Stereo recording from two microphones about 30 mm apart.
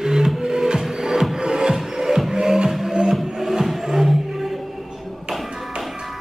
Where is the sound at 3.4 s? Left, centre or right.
Centre.